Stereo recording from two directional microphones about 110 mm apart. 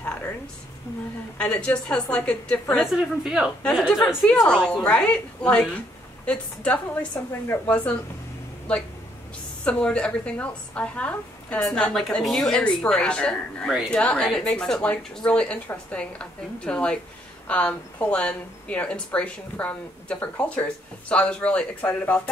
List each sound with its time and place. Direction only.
0.0 s a sound: 20° left (ahead or behind)
1.4 s a woman's voice: 10° left (ahead or behind)
2.9 s a woman's voice: 5° right (ahead or behind)
3.6 s a woman's voice: 5° left (ahead or behind)
9.7 s a woman's voice: 10° left (ahead or behind)